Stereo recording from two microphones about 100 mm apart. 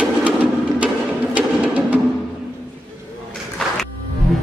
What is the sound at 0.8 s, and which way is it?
Music, 15° right (ahead or behind).